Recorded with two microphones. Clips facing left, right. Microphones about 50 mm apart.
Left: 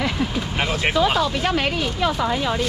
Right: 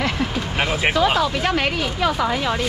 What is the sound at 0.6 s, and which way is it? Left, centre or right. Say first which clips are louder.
Speech: right 1 dB; centre.